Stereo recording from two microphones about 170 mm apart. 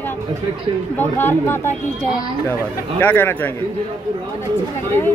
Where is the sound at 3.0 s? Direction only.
10° left (ahead or behind).